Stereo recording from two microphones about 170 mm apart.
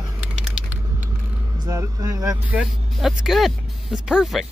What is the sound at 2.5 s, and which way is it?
Speech, 5° right (ahead or behind).